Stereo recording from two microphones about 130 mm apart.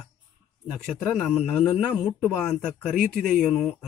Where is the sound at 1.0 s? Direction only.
Centre (ahead or behind).